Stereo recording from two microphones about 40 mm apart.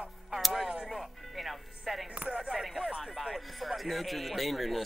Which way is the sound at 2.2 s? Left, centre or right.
Right.